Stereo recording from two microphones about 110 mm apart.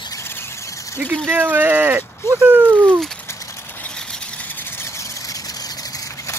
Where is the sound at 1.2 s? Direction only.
20° right (ahead or behind).